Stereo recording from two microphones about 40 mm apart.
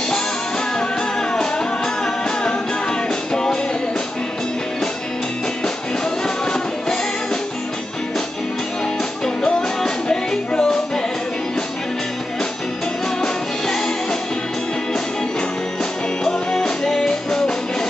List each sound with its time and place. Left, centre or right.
1.3 s music: centre
6.2 s music: centre
9.2 s music: centre
13.2 s music: centre
16.3 s music: centre